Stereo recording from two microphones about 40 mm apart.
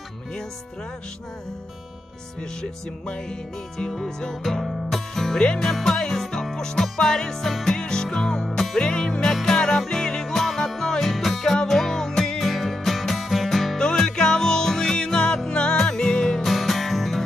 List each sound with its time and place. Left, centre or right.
2.6 s music: centre
4.4 s music: centre
7.4 s music: centre
7.7 s music: centre
8.5 s music: centre
8.7 s music: left
9.2 s music: centre
10.3 s music: centre
12.4 s music: centre
13.7 s music: centre
16.4 s music: centre